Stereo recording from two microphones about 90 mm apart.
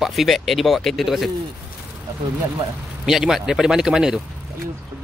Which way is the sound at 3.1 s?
5° right (ahead or behind).